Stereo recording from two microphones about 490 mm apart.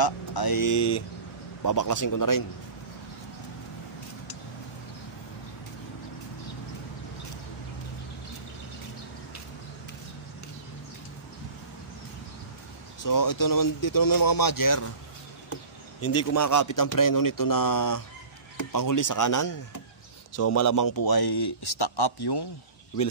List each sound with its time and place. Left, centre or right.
0.0 s speech: left
13.0 s speech: left
15.5 s a man's voice: left